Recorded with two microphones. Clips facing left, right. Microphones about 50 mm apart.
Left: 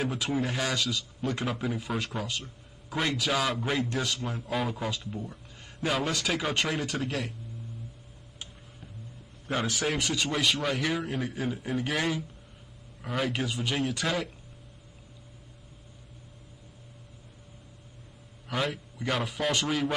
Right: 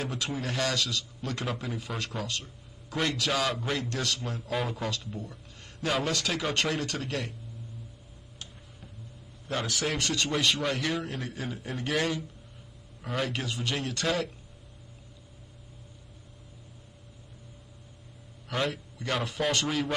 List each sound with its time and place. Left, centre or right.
0.0 s a man's voice: centre
5.9 s a man's voice: centre
9.5 s a man's voice: centre
18.5 s a man's voice: centre